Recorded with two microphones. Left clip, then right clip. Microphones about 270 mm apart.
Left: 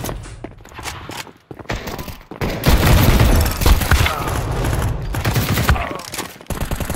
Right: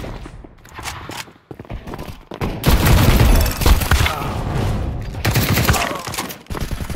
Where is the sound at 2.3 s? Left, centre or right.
Centre.